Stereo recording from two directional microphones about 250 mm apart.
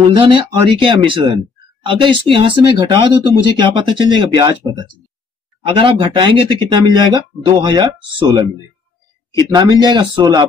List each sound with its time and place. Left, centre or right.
0.1 s speech: centre
9.5 s speech: centre